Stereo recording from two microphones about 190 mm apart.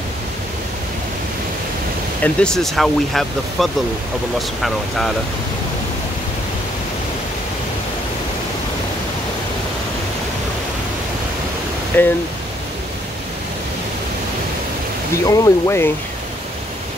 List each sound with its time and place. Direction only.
2.2 s speech: 5° left (ahead or behind)
11.9 s speech: 10° left (ahead or behind)
15.2 s speech: 15° left (ahead or behind)